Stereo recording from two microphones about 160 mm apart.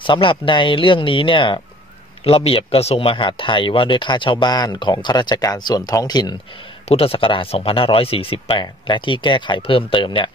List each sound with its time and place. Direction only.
0.0 s speech: 30° left (ahead or behind)